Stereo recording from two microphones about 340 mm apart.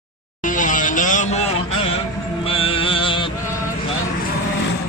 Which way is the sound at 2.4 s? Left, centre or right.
Centre.